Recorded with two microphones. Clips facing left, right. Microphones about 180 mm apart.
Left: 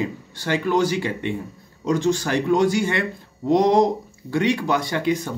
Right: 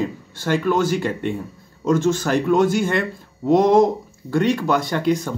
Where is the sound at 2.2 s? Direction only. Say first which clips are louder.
Right 2 dB; 50° right (ahead or behind).